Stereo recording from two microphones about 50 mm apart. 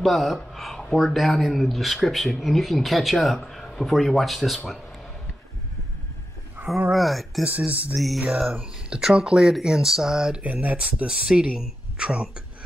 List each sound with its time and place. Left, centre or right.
0.0 s speech: centre
6.6 s a sound: right
6.9 s speech: centre
7.4 s speech: right
7.9 s speech: centre
8.5 s speech: right
10.4 s speech: right
11.1 s speech: centre